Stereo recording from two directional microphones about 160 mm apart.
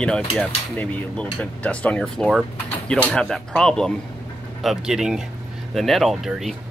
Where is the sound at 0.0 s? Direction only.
5° left (ahead or behind).